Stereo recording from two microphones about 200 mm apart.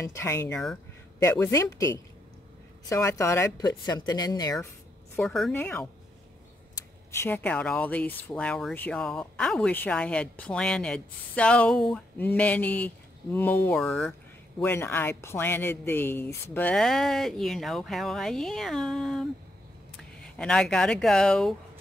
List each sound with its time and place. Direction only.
0.1 s speech: 15° left (ahead or behind)
14.6 s speech: 10° left (ahead or behind)